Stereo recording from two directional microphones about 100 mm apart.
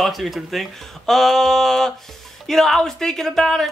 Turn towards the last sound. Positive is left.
turn(degrees=5)  # may be behind; listen again after turning